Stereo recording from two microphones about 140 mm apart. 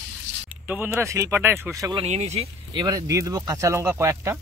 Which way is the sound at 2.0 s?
55° right (ahead or behind).